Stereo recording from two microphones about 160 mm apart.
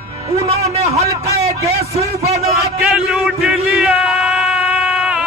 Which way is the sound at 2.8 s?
5° right (ahead or behind).